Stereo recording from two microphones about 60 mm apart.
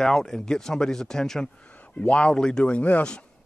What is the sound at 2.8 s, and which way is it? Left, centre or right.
Speech, left.